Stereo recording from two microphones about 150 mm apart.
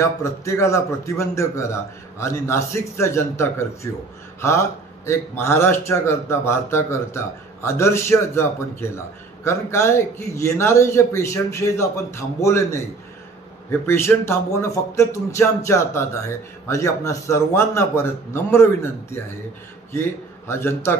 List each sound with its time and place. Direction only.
0.0 s a man's voice: 20° left (ahead or behind)